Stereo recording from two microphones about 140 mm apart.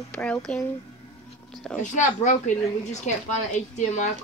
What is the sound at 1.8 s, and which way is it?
Speech, 60° left (ahead or behind).